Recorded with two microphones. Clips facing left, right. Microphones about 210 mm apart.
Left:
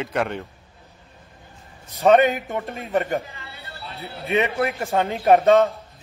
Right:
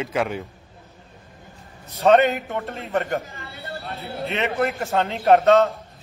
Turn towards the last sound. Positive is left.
turn(degrees=15)  # may be behind; listen again after turning